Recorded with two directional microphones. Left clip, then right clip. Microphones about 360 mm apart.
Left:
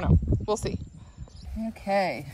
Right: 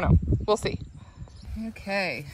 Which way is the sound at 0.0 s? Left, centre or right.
Centre.